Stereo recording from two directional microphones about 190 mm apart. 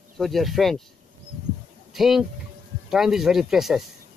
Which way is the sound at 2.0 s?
Centre (ahead or behind).